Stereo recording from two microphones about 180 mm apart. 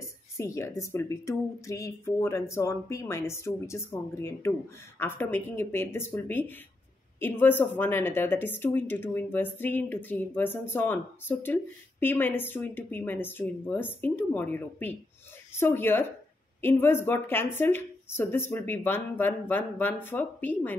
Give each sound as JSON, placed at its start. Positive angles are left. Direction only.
{"t": 0.0, "sound": "speech", "side_deg": 15}